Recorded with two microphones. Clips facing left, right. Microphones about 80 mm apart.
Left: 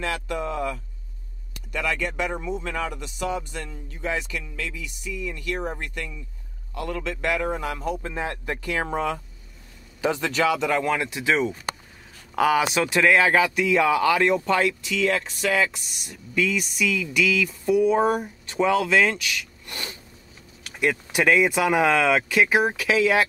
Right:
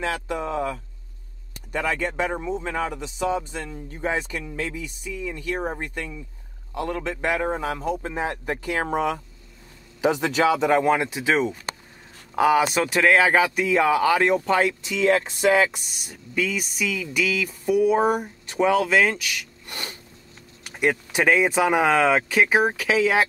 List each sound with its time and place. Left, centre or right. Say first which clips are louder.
0.0 s speech: right 1 dB; right; by 19.4 s centre
19.6 s snort: even; right
20.6 s speech: right 1 dB; right
22.6 s speech: right 1 dB; centre